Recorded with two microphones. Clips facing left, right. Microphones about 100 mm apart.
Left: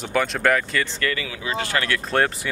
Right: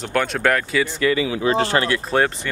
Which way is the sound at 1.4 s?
35° right (ahead or behind).